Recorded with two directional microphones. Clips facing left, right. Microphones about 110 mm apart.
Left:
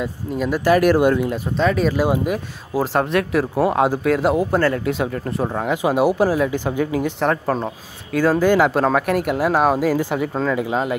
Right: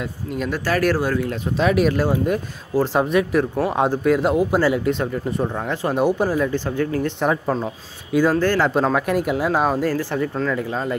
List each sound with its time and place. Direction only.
0.0 s speech: 5° left (ahead or behind)
0.7 s speech: 15° left (ahead or behind)
1.6 s speech: 5° right (ahead or behind)
2.0 s speech: 5° left (ahead or behind)
5.4 s speech: 10° left (ahead or behind)
8.4 s speech: 10° left (ahead or behind)